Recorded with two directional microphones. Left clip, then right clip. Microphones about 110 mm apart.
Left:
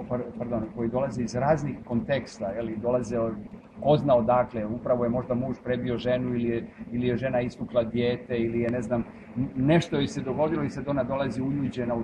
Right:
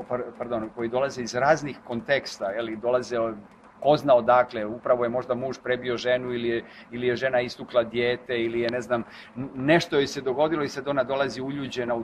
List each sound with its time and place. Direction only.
0.1 s a man's voice: 35° right (ahead or behind)